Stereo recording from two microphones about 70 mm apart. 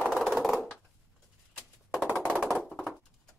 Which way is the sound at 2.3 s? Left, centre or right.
Centre.